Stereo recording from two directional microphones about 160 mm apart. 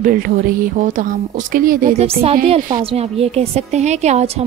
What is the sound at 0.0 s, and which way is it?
Speech, 60° right (ahead or behind).